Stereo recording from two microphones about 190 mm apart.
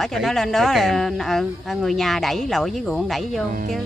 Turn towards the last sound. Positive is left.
turn(degrees=0)  # may be behind; listen again after turning